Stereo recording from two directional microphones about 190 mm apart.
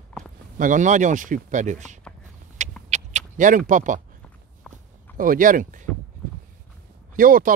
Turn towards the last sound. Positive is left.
turn(degrees=-45)  # may be behind; listen again after turning